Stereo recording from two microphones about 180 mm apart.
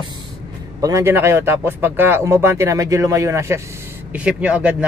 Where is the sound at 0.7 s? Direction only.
20° right (ahead or behind).